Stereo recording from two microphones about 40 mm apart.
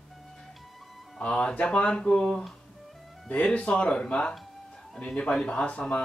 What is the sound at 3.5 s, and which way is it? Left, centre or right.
Speech, left.